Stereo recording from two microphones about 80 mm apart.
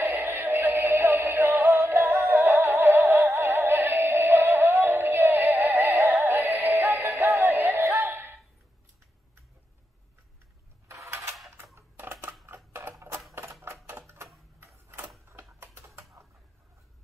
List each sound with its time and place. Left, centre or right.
0.0 s synthetic singing: right
10.9 s a sound: right
12.4 s typewriter: right